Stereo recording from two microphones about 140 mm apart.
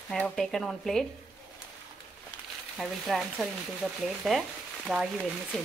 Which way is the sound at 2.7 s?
Centre (ahead or behind).